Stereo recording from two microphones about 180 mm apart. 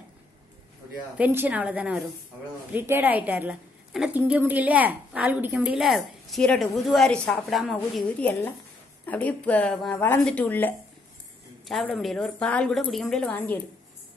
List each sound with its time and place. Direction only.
1.1 s a woman's voice: 10° right (ahead or behind); by 13.6 s 10° left (ahead or behind)